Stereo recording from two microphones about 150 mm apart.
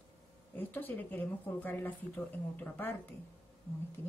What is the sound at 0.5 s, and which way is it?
Speech, 10° left (ahead or behind).